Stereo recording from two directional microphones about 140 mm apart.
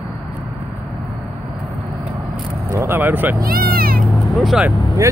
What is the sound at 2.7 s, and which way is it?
Speech, 20° right (ahead or behind).